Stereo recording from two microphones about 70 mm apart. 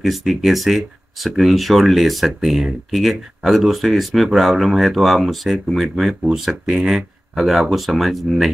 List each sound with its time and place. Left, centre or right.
0.0 s speech: centre